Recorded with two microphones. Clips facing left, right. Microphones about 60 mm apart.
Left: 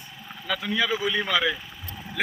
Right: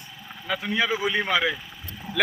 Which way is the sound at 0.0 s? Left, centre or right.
Centre.